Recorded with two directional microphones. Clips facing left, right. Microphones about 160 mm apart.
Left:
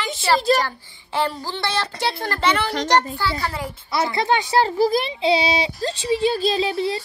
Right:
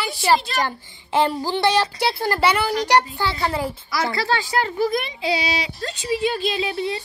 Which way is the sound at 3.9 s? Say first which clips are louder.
Left 4 dB; 25° left (ahead or behind).